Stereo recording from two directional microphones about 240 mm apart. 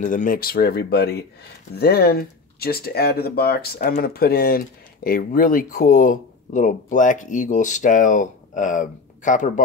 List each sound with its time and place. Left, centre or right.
0.0 s speech: left